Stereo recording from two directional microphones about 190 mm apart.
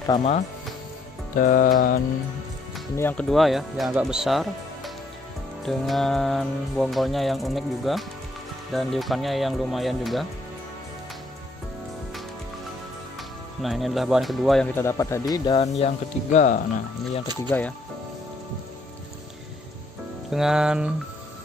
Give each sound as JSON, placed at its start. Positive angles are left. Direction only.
{"t": 1.3, "sound": "music", "side_deg": 45}
{"t": 3.0, "sound": "music", "side_deg": 10}
{"t": 13.6, "sound": "music", "side_deg": 0}
{"t": 15.6, "sound": "speech", "side_deg": 35}
{"t": 17.5, "sound": "speech", "side_deg": 10}
{"t": 20.2, "sound": "music", "side_deg": -5}